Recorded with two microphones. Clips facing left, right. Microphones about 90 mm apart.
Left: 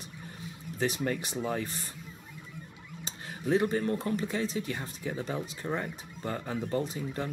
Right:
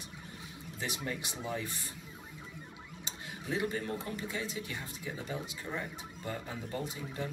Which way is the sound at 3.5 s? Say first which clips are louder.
Left 8 dB; 40° left (ahead or behind).